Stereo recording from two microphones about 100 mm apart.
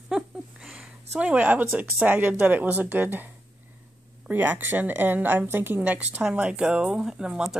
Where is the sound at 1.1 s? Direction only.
10° right (ahead or behind).